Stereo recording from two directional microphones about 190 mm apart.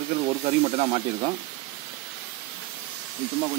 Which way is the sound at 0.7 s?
30° right (ahead or behind).